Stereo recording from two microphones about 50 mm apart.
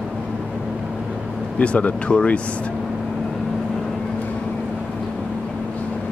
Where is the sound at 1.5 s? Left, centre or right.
Left.